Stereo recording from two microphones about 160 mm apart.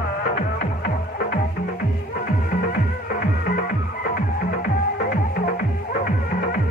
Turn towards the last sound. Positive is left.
turn(degrees=65)  # may be behind; listen again after turning